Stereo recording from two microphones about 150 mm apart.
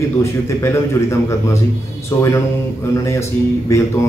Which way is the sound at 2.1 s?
20° left (ahead or behind).